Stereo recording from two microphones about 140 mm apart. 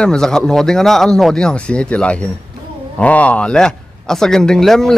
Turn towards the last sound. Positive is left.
turn(degrees=5)  # may be behind; listen again after turning